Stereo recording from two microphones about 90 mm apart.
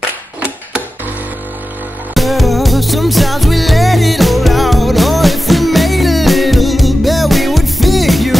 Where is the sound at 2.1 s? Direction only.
Centre (ahead or behind).